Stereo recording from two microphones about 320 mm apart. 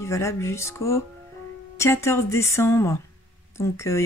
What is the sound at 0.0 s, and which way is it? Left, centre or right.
Speech, centre.